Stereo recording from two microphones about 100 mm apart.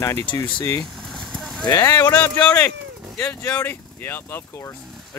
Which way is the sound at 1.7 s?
25° left (ahead or behind).